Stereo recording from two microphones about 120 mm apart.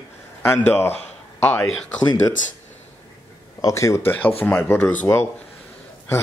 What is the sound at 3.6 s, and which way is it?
Speech, 25° left (ahead or behind).